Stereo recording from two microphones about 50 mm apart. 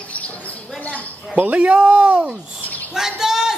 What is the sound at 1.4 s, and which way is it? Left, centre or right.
Speech, right.